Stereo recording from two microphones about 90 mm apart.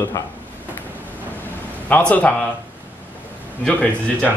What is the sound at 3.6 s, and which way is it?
Speech, 15° left (ahead or behind).